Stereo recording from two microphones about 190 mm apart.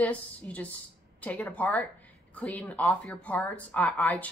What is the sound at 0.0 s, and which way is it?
Speech, 5° left (ahead or behind).